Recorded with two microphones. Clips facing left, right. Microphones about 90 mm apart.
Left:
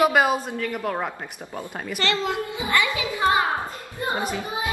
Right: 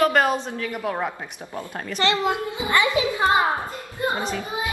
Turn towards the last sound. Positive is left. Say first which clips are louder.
# even
turn(degrees=15)  # may be behind; listen again after turning